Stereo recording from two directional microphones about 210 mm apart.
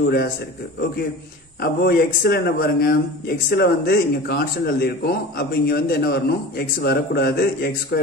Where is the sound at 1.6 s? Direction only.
50° left (ahead or behind).